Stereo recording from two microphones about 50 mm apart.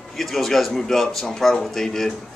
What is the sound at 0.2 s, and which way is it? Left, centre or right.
Speech, centre.